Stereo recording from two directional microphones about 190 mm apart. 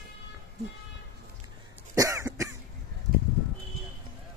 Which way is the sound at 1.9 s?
15° right (ahead or behind).